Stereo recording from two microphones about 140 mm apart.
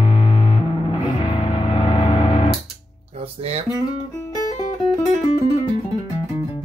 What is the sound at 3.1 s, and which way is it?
Music, 45° right (ahead or behind).